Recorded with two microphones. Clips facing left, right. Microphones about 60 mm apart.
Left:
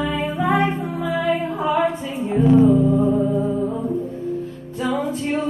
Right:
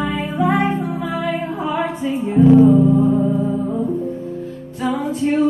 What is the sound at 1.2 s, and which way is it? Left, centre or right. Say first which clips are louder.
A capella: left 3 dB; right.